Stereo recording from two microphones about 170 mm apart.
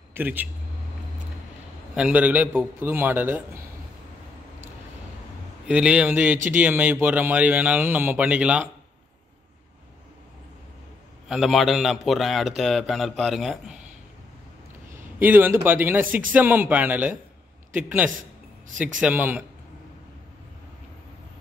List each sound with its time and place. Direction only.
0.1 s speech: 10° right (ahead or behind)
2.0 s speech: 5° right (ahead or behind)
5.7 s speech: 5° right (ahead or behind)
6.3 s speech: 50° right (ahead or behind)
6.6 s speech: 10° right (ahead or behind)
11.2 s a man's voice: centre (ahead or behind)
15.1 s speech: 10° right (ahead or behind)